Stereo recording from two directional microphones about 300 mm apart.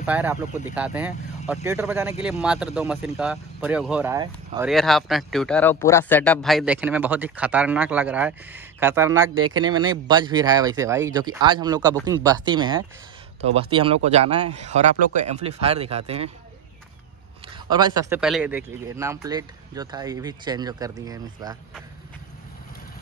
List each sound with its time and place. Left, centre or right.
0.0 s a man's voice: centre
4.6 s a man's voice: centre
17.6 s a man's voice: centre